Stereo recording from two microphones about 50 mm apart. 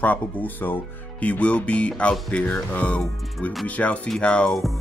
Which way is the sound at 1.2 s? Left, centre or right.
Left.